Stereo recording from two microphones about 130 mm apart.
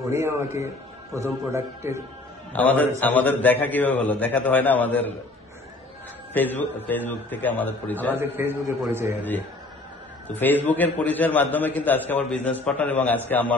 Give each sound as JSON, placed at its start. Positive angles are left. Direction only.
{"t": 0.1, "sound": "a man's voice", "side_deg": -20}
{"t": 2.5, "sound": "a man's voice", "side_deg": 10}
{"t": 6.3, "sound": "a man's voice", "side_deg": 15}
{"t": 8.2, "sound": "a man's voice", "side_deg": -20}
{"t": 10.4, "sound": "a man's voice", "side_deg": 15}